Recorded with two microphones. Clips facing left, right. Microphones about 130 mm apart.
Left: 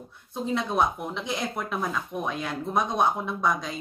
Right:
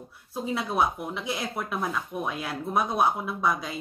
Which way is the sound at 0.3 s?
5° right (ahead or behind).